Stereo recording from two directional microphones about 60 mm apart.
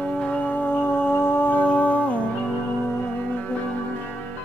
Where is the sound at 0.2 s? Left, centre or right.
Left.